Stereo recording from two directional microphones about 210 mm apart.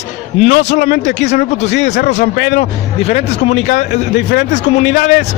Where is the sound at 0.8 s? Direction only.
55° left (ahead or behind).